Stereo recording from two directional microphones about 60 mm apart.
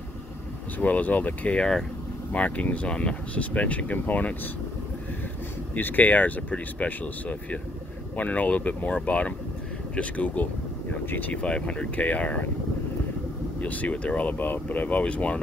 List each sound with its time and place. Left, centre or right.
0.7 s speech: left
1.6 s speech: centre
2.3 s speech: left
5.8 s speech: left
11.4 s speech: centre
13.6 s speech: left